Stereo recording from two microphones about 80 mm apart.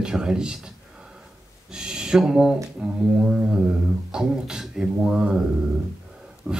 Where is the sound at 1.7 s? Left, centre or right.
Centre.